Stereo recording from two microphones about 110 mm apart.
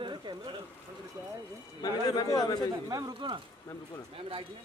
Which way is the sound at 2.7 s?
40° right (ahead or behind).